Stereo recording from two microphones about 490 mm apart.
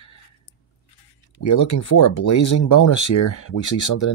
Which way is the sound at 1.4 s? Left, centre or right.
Left.